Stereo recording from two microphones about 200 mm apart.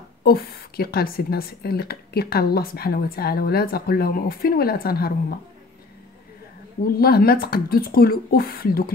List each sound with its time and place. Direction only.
0.2 s a woman's voice: 50° left (ahead or behind)
7.0 s a woman's voice: 50° left (ahead or behind)